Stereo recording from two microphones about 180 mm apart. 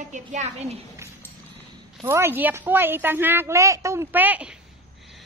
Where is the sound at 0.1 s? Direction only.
40° right (ahead or behind).